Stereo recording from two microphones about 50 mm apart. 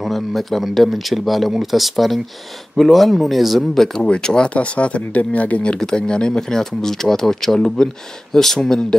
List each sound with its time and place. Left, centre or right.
0.0 s speech: centre
4.6 s speech: left
5.8 s speech: centre